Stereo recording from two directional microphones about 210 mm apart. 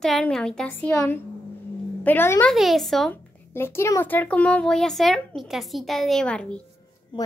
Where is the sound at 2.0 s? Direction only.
10° left (ahead or behind).